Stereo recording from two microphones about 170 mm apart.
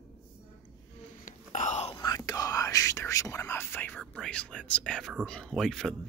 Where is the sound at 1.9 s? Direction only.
20° left (ahead or behind); by 5.1 s 5° left (ahead or behind).